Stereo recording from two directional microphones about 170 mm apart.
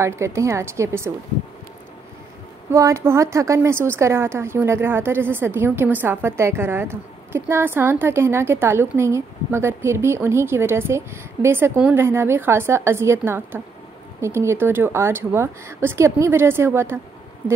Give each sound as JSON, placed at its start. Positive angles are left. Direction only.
{"t": 0.0, "sound": "a woman's voice", "side_deg": -15}
{"t": 2.7, "sound": "a woman's voice", "side_deg": -20}